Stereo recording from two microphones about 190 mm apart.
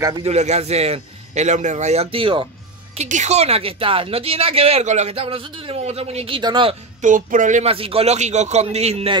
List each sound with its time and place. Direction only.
0.2 s speech: 35° right (ahead or behind)
3.0 s speech: 35° right (ahead or behind)
7.0 s speech: 45° right (ahead or behind)